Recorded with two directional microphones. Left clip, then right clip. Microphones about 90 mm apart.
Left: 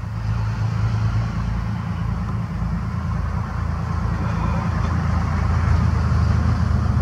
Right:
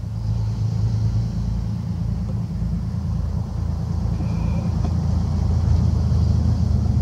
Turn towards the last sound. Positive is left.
turn(degrees=35)  # may be behind; listen again after turning